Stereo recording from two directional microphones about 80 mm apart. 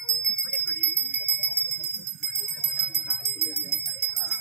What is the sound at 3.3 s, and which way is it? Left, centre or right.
Bell, left.